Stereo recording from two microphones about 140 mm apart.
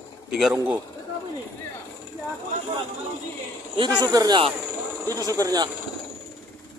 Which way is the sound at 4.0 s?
25° right (ahead or behind).